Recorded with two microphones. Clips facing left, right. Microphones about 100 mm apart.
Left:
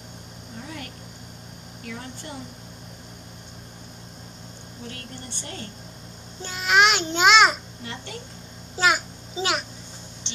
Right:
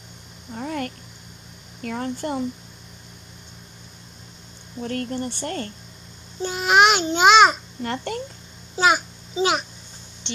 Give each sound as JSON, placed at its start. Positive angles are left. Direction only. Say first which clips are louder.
{"t": 0.6, "sound": "a sound", "louder": "right 10 dB", "side_deg": -55}
{"t": 1.8, "sound": "speech", "louder": "right 10 dB", "side_deg": -50}
{"t": 4.8, "sound": "speech", "louder": "right 13 dB", "side_deg": -50}
{"t": 6.4, "sound": "child singing", "louder": "right 3 dB", "side_deg": -10}
{"t": 7.8, "sound": "speech", "louder": "right 12 dB", "side_deg": -50}
{"t": 8.8, "sound": "a child's voice", "louder": "right 3 dB", "side_deg": 0}